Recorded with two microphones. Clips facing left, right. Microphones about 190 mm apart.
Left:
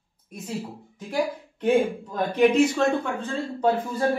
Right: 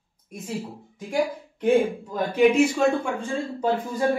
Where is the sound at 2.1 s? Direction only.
10° right (ahead or behind).